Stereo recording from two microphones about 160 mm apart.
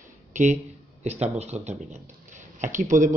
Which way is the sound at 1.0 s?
45° right (ahead or behind).